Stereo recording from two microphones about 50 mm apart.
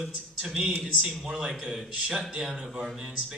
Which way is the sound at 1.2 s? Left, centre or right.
Centre.